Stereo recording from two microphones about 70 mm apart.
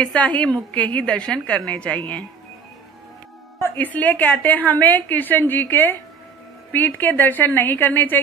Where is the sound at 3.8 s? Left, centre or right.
Left.